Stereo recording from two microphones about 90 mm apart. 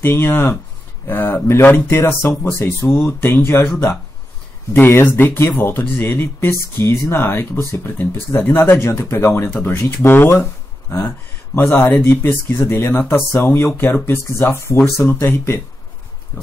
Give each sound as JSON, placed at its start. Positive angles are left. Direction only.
{"t": 0.0, "sound": "speech", "side_deg": 25}
{"t": 4.7, "sound": "speech", "side_deg": 25}